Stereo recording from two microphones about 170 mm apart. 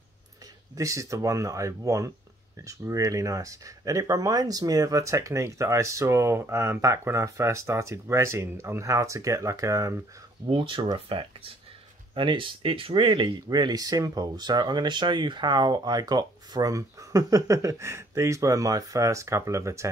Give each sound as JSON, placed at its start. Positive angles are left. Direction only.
{"t": 0.7, "sound": "speech", "side_deg": -20}
{"t": 10.5, "sound": "speech", "side_deg": -30}